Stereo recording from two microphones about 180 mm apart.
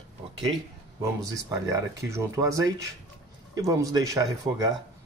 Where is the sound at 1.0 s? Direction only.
15° right (ahead or behind).